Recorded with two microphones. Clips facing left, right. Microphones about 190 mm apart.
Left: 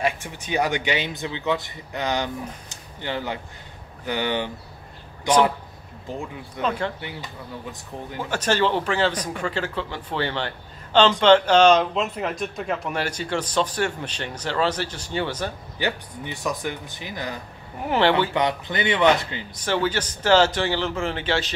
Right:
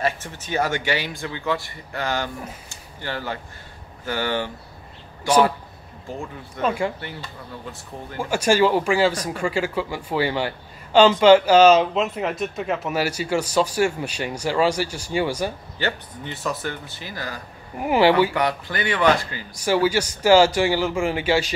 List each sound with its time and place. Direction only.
0.0 s speech: 15° left (ahead or behind)
2.7 s a sound: 20° left (ahead or behind)
4.0 s speech: 20° left (ahead or behind)
6.6 s speech: 10° right (ahead or behind)
7.0 s speech: 15° left (ahead or behind)
8.2 s speech: 10° right (ahead or behind)
15.8 s speech: 15° left (ahead or behind)
17.8 s speech: 10° right (ahead or behind)
18.3 s speech: 20° left (ahead or behind)
19.6 s speech: 10° right (ahead or behind)